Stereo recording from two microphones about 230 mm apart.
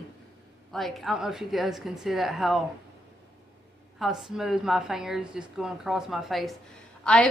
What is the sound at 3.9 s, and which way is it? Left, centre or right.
A woman's voice, centre.